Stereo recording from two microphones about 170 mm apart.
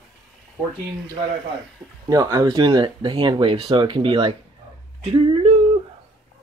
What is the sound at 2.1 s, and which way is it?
Speech, 20° right (ahead or behind).